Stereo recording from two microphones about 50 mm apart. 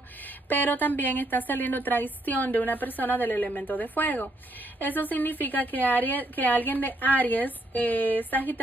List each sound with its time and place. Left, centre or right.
0.5 s a woman's voice: left